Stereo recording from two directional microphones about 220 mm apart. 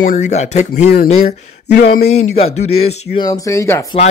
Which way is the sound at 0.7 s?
45° left (ahead or behind).